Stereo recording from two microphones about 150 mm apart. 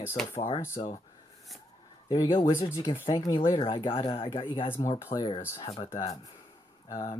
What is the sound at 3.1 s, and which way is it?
Speech, 25° left (ahead or behind).